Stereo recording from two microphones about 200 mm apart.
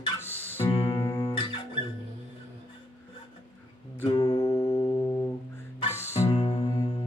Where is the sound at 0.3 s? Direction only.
10° left (ahead or behind).